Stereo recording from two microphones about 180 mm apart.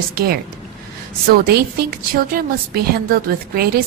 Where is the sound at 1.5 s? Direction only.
60° right (ahead or behind).